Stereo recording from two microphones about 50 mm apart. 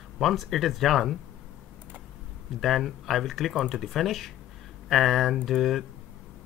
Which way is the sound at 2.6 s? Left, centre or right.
Centre.